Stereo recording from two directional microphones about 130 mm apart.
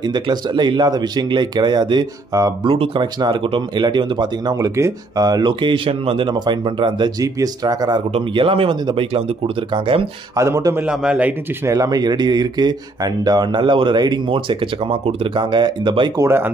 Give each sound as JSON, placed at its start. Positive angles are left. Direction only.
{"t": 0.0, "sound": "speech", "side_deg": -35}
{"t": 2.6, "sound": "speech", "side_deg": -45}
{"t": 8.1, "sound": "speech", "side_deg": -45}
{"t": 10.3, "sound": "speech", "side_deg": -25}
{"t": 10.9, "sound": "speech", "side_deg": -5}
{"t": 11.6, "sound": "speech", "side_deg": -25}
{"t": 16.2, "sound": "speech", "side_deg": -20}